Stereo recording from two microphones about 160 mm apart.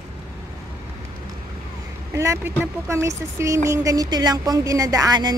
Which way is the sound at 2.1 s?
20° right (ahead or behind).